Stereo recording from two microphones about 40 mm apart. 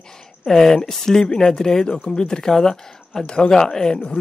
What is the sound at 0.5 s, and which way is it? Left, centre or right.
Speech, centre.